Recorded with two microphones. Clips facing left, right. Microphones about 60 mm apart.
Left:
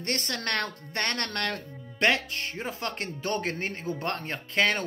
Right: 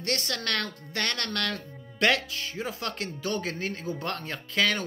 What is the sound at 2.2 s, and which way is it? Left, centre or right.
Speech, left.